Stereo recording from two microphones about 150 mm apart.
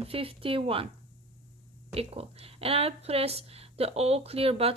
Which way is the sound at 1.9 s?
40° right (ahead or behind).